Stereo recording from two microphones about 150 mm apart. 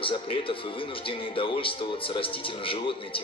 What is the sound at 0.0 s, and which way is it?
Speech, 35° left (ahead or behind).